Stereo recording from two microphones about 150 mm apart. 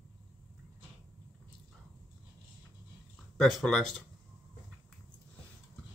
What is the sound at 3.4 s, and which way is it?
Speech, 5° left (ahead or behind).